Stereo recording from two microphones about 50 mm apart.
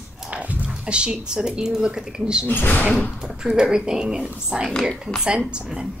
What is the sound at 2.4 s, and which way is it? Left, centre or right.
Speech, left.